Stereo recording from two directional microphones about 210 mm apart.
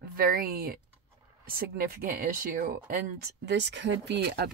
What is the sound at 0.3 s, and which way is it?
Speech, 45° right (ahead or behind).